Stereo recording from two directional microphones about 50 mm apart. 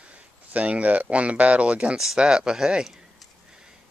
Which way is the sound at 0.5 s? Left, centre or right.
Right.